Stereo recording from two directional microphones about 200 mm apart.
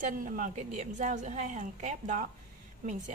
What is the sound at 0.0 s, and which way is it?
A woman's voice, 40° right (ahead or behind).